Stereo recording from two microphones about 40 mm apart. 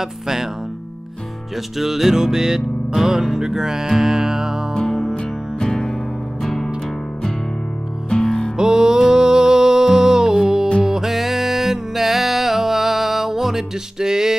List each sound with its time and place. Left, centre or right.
0.0 s music: centre
1.8 s music: centre
4.7 s music: centre
5.6 s music: centre
8.2 s music: centre
8.5 s music: centre